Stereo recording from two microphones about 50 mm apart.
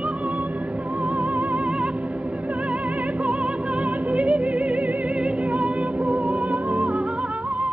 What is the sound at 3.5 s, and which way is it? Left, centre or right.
Music, centre.